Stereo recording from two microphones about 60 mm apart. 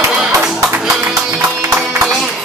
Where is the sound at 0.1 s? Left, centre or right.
Centre.